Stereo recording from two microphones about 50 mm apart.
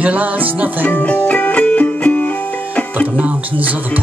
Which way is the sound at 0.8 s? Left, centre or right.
Left.